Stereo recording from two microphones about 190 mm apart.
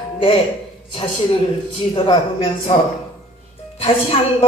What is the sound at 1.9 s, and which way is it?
Speech, 25° left (ahead or behind).